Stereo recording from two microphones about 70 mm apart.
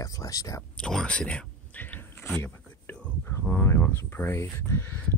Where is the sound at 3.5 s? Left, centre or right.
Left.